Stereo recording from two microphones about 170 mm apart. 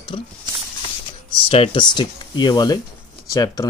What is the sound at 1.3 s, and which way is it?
Speech, 35° left (ahead or behind).